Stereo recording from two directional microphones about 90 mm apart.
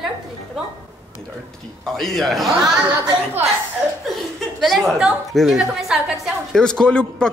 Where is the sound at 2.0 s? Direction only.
Centre (ahead or behind).